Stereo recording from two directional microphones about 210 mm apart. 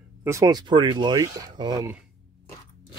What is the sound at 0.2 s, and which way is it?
Speech, 15° right (ahead or behind).